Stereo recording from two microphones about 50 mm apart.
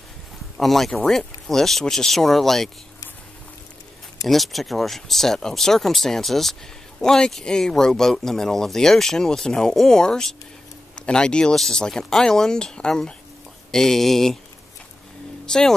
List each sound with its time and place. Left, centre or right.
0.6 s speech: centre
4.3 s speech: centre
15.4 s speech: centre